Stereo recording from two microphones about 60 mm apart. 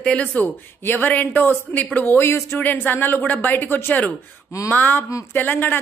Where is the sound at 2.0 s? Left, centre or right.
Left.